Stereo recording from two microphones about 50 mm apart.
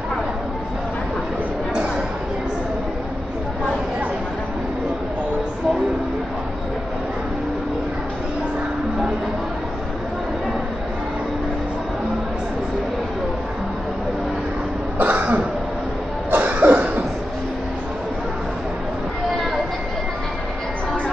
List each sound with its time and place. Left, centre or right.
15.0 s cough: right